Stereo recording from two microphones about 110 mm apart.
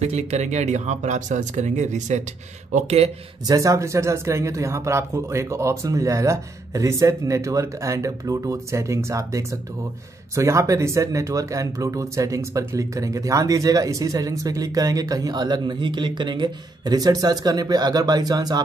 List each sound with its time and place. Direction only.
0.0 s speech: 80° right
2.7 s speech: 75° right (ahead or behind)
3.4 s speech: 30° right (ahead or behind)